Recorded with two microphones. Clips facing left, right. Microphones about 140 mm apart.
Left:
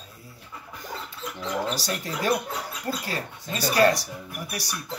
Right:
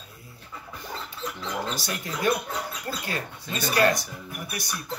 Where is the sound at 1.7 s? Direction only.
40° left (ahead or behind).